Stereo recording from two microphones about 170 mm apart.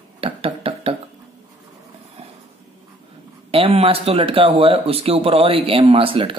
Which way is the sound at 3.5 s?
35° right (ahead or behind).